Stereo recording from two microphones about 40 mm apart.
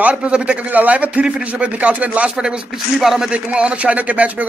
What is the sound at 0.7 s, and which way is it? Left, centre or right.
Speech, right.